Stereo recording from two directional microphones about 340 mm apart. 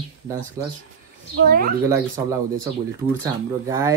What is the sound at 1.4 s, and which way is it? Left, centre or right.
Speech, right.